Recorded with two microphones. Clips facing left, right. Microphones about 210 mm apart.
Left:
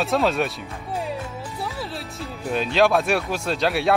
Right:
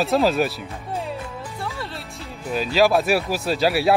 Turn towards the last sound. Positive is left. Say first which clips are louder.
# right 2 dB
turn(degrees=-5)  # may be behind; listen again after turning